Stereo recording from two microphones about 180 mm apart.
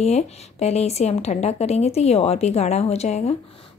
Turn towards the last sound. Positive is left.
turn(degrees=40)  # may be behind; listen again after turning